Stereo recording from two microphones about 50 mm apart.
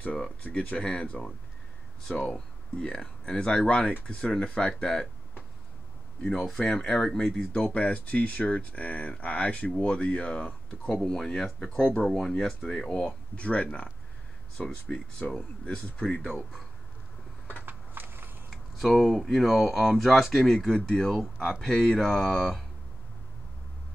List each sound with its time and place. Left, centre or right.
0.4 s speech: left
6.2 s speech: centre
7.5 s speech: left
11.0 s speech: centre
13.0 s speech: left
17.6 s a sound: right
18.8 s speech: centre